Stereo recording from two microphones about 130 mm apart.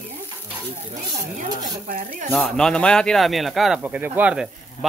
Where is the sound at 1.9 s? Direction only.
90° right.